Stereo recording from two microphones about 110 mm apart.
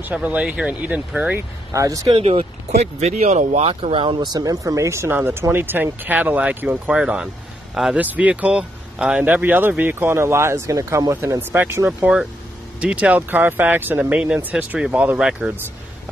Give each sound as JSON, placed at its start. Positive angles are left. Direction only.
{"t": 0.0, "sound": "speech", "side_deg": -15}
{"t": 1.7, "sound": "speech", "side_deg": -30}
{"t": 2.1, "sound": "speech", "side_deg": -60}